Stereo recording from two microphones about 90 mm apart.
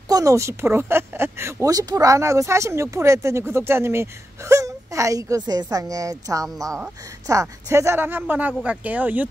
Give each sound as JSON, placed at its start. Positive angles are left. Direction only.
{"t": 0.1, "sound": "speech", "side_deg": -40}
{"t": 1.7, "sound": "speech", "side_deg": -45}